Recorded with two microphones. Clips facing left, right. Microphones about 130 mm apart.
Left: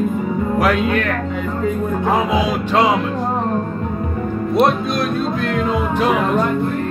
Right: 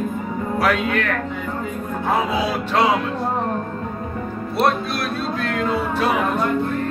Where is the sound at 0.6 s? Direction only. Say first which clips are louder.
Left 2 dB; 15° left (ahead or behind).